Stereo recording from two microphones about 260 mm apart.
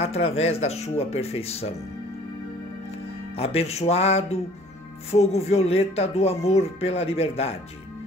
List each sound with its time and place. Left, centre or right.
0.0 s speech: left
3.3 s speech: left